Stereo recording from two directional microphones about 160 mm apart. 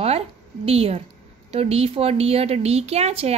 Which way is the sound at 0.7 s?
40° right (ahead or behind).